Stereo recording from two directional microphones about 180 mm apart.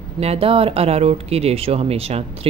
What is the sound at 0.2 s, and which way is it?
A woman's voice, 35° right (ahead or behind).